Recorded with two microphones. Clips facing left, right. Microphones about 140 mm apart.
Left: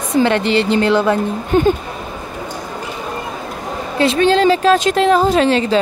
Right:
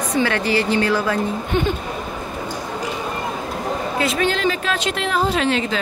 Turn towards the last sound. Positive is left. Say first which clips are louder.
# left 7 dB
turn(degrees=35)  # may be behind; listen again after turning